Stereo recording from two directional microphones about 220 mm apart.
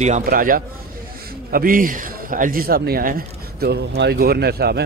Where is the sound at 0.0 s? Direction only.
35° right (ahead or behind).